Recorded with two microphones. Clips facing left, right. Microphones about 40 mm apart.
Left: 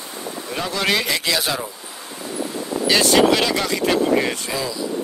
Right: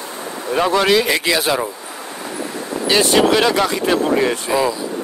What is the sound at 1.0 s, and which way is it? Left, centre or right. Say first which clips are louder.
Speech: right 5 dB; centre.